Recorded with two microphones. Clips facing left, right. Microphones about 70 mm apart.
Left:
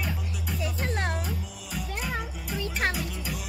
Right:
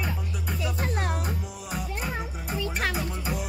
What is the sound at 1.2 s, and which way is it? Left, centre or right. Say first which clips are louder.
Music: right 3 dB; right.